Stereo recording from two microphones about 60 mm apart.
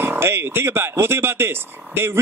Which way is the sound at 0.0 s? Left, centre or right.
Right.